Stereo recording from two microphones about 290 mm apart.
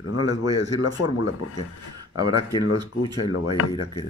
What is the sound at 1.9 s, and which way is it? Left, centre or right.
A man's voice, centre.